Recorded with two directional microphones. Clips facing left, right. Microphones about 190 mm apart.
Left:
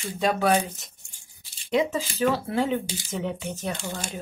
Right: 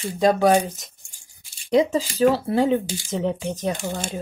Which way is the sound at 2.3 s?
40° right (ahead or behind).